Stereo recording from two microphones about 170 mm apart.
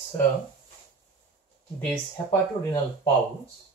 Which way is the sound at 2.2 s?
20° left (ahead or behind).